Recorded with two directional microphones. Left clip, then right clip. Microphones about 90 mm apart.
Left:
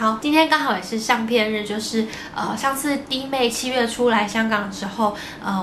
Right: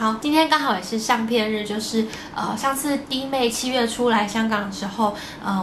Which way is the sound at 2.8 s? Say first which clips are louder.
Left 1 dB; centre (ahead or behind).